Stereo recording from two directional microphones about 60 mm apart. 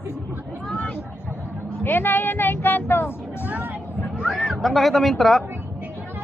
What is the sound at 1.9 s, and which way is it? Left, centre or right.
Speech, left.